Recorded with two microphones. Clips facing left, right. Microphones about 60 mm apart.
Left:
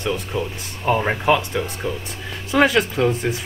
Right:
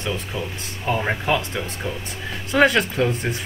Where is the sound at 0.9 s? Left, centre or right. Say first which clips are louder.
Left 4 dB; centre.